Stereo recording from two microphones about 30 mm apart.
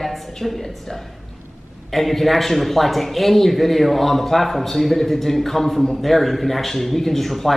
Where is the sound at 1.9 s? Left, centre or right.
Centre.